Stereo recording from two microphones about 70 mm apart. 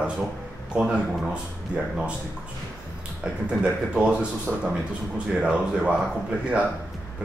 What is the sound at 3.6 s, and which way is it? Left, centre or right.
Speech, centre.